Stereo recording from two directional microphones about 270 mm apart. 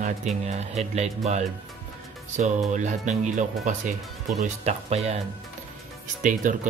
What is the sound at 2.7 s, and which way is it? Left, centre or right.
Speech, right.